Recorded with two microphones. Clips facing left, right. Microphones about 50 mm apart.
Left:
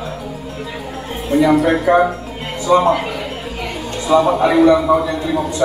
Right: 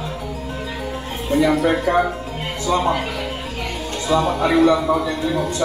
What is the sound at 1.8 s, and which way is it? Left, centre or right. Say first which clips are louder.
Speech: left 5 dB; centre.